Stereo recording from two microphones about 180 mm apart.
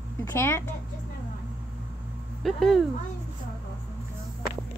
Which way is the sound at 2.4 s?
Centre (ahead or behind).